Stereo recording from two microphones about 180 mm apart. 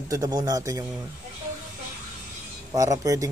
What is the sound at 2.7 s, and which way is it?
Speech, 20° right (ahead or behind).